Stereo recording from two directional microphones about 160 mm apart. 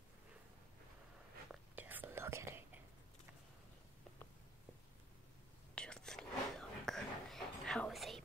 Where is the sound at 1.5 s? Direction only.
10° right (ahead or behind).